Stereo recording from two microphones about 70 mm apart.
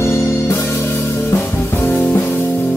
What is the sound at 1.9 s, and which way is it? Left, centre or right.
Music, left.